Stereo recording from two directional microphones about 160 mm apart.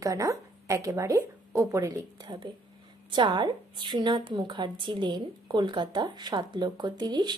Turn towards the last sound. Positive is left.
turn(degrees=-25)  # may be behind; listen again after turning